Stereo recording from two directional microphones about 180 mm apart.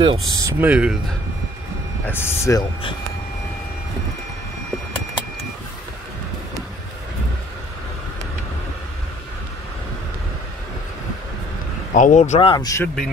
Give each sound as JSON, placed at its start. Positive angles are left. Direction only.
{"t": 0.0, "sound": "speech", "side_deg": -25}
{"t": 0.7, "sound": "speech", "side_deg": -5}
{"t": 2.0, "sound": "speech", "side_deg": 10}
{"t": 11.9, "sound": "speech", "side_deg": 45}
{"t": 12.4, "sound": "speech", "side_deg": 25}